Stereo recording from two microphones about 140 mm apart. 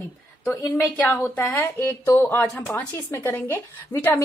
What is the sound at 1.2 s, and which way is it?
A woman's voice, 15° left (ahead or behind).